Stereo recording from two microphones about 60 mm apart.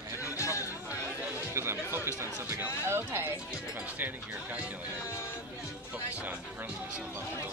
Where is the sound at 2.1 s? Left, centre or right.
Right.